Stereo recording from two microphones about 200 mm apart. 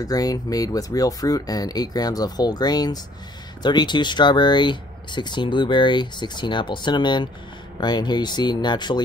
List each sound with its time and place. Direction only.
0.0 s speech: 20° left (ahead or behind)